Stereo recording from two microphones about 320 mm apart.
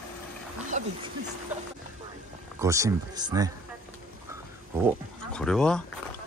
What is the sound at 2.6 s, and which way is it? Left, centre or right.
Speech, centre.